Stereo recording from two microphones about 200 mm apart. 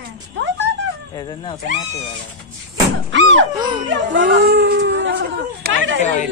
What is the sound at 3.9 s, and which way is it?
Speech, 65° right (ahead or behind).